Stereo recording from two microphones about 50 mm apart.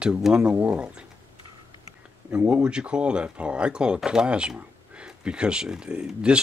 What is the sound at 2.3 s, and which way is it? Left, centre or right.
Speech, right.